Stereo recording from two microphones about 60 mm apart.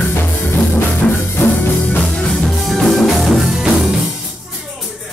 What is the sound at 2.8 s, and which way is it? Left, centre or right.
Music, centre.